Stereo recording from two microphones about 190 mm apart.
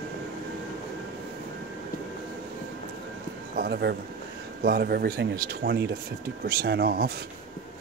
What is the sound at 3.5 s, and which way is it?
Speech, 55° right (ahead or behind).